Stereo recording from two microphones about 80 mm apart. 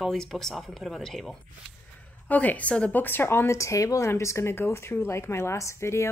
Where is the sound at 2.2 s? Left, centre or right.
Left.